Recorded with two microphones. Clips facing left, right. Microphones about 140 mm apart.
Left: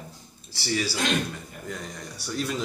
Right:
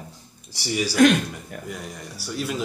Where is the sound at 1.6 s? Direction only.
10° right (ahead or behind).